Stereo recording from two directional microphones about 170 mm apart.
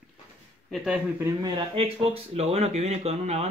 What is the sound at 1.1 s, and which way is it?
Speech, 15° right (ahead or behind).